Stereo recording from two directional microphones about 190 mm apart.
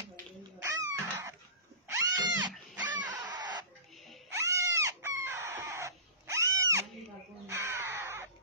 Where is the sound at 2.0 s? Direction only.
20° right (ahead or behind).